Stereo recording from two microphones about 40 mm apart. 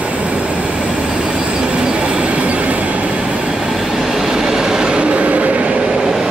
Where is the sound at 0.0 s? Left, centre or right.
Right.